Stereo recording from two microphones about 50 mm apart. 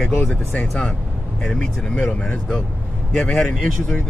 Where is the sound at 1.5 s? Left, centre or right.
Centre.